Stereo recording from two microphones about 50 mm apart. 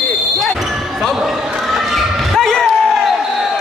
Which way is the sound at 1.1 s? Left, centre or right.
Centre.